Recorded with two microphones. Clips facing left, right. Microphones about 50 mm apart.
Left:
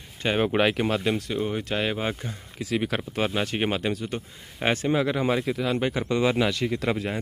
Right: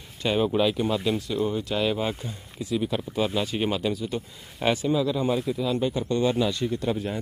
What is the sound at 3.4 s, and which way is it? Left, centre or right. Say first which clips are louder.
Speech: even; left.